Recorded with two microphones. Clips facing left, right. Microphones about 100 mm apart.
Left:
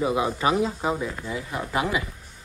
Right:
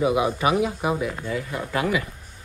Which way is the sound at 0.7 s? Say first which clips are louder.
Right 2 dB; 15° right (ahead or behind).